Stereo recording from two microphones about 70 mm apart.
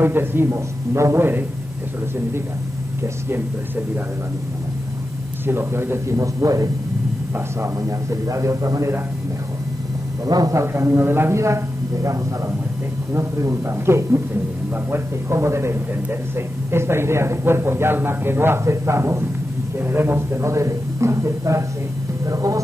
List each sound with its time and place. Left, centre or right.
0.0 s speech: right
5.5 s a man's voice: right
10.2 s a man's voice: right
10.6 s a man's voice: right